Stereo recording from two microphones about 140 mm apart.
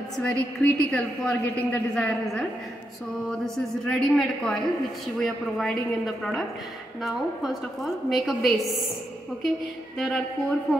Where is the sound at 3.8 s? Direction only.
5° left (ahead or behind).